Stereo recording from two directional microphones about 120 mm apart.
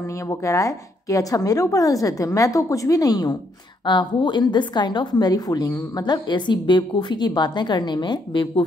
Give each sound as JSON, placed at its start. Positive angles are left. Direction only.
{"t": 0.3, "sound": "a woman's voice", "side_deg": 25}